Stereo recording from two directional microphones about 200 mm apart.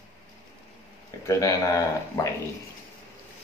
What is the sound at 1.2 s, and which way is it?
Speech, 15° left (ahead or behind).